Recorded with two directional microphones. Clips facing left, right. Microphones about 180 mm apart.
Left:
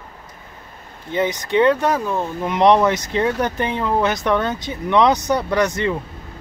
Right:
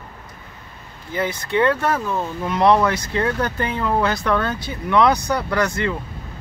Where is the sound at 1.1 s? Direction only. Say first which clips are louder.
Left 3 dB; 20° left (ahead or behind).